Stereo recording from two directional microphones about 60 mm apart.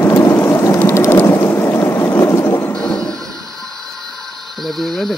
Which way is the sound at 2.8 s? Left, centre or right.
Centre.